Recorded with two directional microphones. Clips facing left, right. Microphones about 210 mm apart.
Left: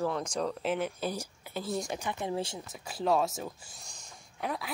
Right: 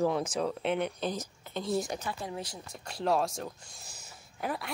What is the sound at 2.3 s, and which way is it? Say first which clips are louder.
Speech: left 5 dB; 25° left (ahead or behind).